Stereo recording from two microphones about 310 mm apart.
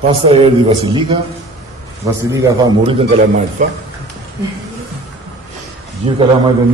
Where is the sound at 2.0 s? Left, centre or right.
Centre.